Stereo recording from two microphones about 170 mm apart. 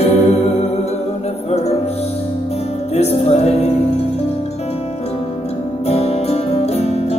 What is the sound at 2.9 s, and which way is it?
Music, 40° left (ahead or behind).